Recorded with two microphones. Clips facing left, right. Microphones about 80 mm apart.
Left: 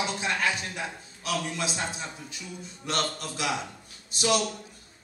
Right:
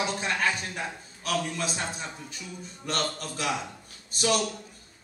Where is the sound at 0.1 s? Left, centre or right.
Right.